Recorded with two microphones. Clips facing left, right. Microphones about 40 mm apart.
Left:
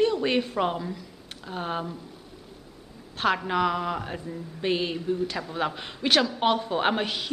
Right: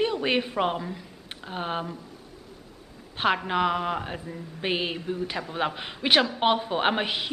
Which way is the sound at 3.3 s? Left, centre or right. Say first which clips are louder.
Even; centre.